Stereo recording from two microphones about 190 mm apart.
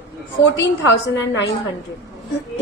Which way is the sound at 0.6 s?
70° left (ahead or behind).